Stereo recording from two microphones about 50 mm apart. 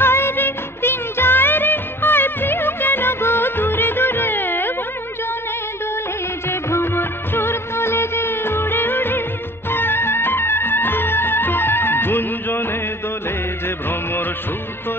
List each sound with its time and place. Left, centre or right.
0.0 s music: left
6.5 s music of bollywood: left
9.7 s music: left